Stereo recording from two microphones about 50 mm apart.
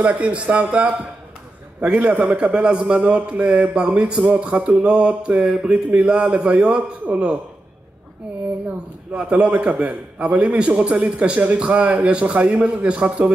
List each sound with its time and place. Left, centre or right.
0.2 s a man's voice: right
8.6 s a man's voice: right